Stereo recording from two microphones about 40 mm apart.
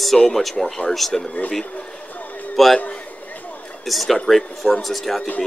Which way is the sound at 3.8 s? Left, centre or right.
Centre.